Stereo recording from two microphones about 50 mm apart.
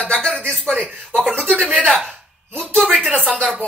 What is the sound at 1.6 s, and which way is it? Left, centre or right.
Speech, right.